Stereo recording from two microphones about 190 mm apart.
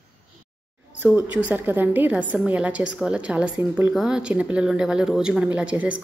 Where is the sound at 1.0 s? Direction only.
5° right (ahead or behind).